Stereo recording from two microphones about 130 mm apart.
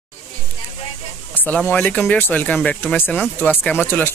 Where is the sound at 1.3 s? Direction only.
15° left (ahead or behind).